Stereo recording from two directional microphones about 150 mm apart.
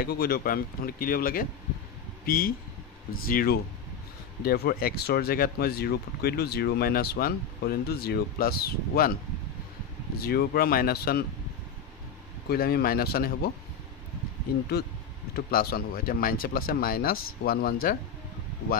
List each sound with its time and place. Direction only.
0.0 s speech: 90° left; by 3.5 s 75° left (ahead or behind)
4.5 s speech: 90° left
10.1 s speech: 90° left
12.4 s speech: 90° left
14.8 s speech: 90° left